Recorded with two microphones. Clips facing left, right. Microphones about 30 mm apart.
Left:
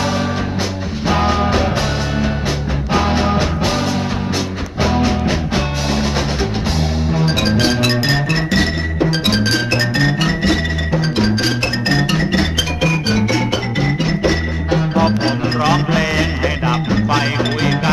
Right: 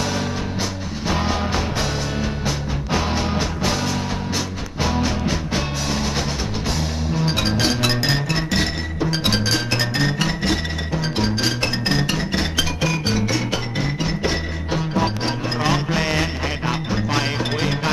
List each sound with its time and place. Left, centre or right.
1.0 s music: left
2.9 s music: left
4.8 s music: centre
7.2 s music: centre
15.0 s music: left